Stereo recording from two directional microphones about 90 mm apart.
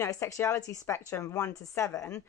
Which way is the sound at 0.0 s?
35° left (ahead or behind).